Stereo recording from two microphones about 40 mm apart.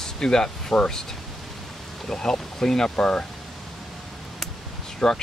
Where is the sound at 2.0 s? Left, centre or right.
Centre.